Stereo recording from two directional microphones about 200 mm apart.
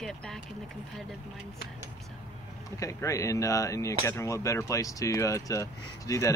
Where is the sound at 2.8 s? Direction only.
15° left (ahead or behind).